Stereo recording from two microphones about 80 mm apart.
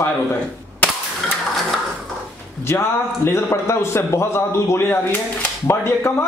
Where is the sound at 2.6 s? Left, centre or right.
Left.